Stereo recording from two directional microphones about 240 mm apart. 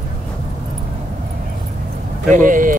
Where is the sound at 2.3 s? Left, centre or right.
Right.